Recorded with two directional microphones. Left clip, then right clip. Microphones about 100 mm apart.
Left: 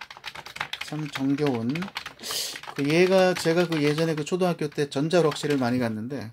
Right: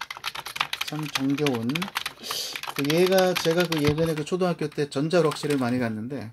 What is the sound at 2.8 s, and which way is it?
Speech, 25° left (ahead or behind).